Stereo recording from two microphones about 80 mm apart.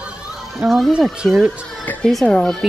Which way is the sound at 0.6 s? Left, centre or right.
Centre.